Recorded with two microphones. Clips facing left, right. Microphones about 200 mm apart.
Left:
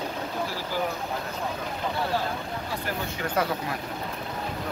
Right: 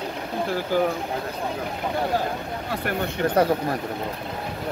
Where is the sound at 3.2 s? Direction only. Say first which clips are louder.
Right 8 dB; 35° right (ahead or behind).